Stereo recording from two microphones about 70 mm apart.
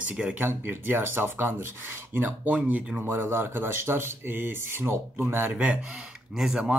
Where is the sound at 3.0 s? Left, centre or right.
Right.